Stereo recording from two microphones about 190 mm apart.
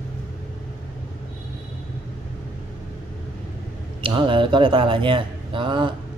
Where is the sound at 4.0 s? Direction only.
25° right (ahead or behind).